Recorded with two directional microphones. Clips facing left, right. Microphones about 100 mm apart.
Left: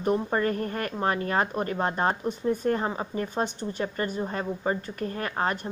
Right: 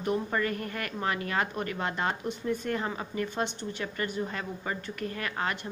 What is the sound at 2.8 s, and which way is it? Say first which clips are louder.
Speech: left 3 dB; 30° left (ahead or behind).